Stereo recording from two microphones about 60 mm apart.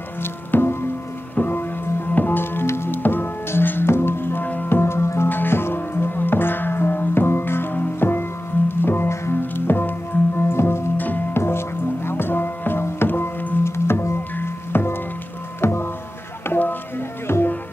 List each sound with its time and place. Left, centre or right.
0.2 s music: left
13.7 s music: left
16.4 s a sound: left
17.3 s music: left